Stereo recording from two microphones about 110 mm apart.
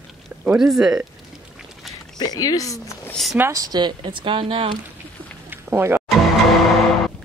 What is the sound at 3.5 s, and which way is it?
Speech, 35° right (ahead or behind).